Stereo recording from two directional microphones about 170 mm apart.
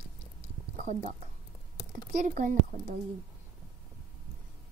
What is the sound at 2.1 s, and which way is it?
Speech, 50° right (ahead or behind).